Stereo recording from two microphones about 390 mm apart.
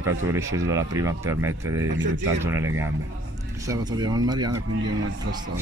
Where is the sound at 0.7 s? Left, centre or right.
Centre.